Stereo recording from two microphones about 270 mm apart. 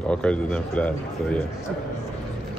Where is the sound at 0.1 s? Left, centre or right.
Centre.